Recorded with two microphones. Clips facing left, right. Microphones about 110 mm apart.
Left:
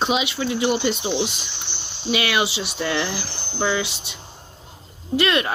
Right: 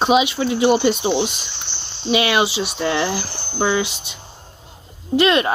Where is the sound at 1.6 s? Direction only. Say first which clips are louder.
Right 3 dB; 15° left (ahead or behind).